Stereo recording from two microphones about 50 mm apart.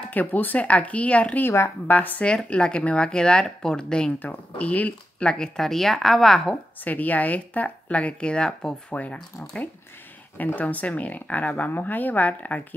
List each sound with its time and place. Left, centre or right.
0.1 s speech: left
2.2 s speech: centre
4.2 s speech: left
5.2 s speech: centre
6.8 s speech: left